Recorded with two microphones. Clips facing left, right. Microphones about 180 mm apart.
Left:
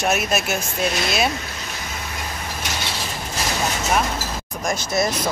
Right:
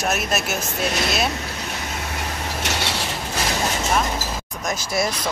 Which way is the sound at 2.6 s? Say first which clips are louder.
Right 3 dB; 70° right (ahead or behind).